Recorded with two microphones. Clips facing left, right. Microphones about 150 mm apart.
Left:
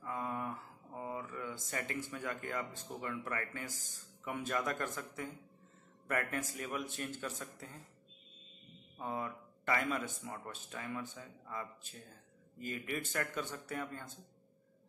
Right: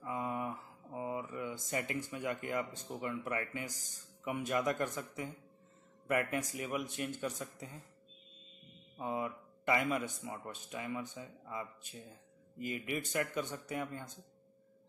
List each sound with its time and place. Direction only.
0.0 s mantra: 15° right (ahead or behind)
2.9 s a man's voice: 15° right (ahead or behind)
8.9 s a man's voice: 10° right (ahead or behind)